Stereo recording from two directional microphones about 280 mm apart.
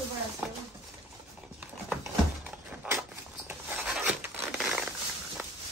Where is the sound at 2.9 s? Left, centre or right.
Centre.